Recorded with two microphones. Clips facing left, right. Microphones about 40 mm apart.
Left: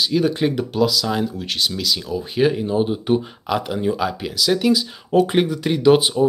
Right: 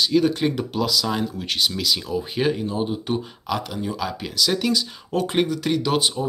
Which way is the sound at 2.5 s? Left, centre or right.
Centre.